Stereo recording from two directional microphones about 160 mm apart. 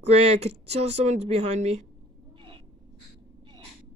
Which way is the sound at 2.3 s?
30° right (ahead or behind).